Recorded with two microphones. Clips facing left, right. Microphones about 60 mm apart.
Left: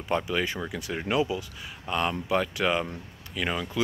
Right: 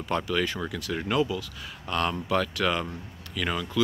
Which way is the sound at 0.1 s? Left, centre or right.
Centre.